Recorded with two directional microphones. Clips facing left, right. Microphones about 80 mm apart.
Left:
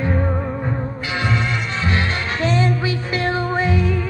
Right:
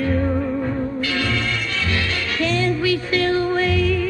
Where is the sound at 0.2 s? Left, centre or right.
Left.